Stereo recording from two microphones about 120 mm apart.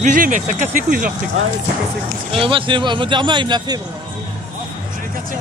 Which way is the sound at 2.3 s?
45° right (ahead or behind).